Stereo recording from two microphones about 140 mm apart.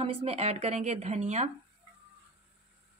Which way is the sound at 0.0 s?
45° right (ahead or behind).